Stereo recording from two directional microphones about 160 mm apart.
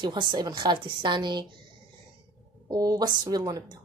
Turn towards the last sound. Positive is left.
turn(degrees=-25)  # may be behind; listen again after turning